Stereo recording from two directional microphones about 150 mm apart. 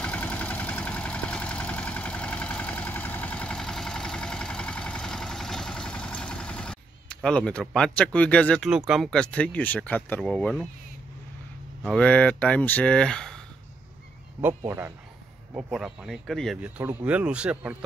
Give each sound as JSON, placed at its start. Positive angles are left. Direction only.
{"t": 0.0, "sound": "vehicle", "side_deg": 10}
{"t": 7.2, "sound": "speech", "side_deg": 5}
{"t": 8.6, "sound": "speech", "side_deg": -5}
{"t": 11.8, "sound": "speech", "side_deg": 5}
{"t": 14.6, "sound": "speech", "side_deg": -15}
{"t": 15.5, "sound": "speech", "side_deg": -5}
{"t": 16.7, "sound": "speech", "side_deg": -10}